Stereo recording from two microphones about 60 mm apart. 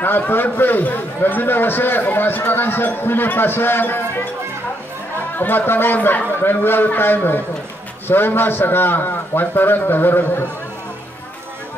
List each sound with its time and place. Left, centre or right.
0.0 s a man's voice: left
5.4 s a man's voice: left